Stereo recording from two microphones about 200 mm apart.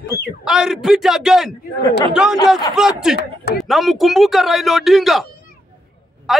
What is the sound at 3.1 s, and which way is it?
Speech, 50° left (ahead or behind).